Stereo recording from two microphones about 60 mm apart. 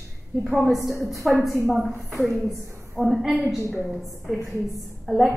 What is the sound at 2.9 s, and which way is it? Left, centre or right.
Speech, centre.